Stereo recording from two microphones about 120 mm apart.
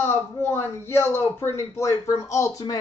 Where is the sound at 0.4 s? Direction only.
20° left (ahead or behind).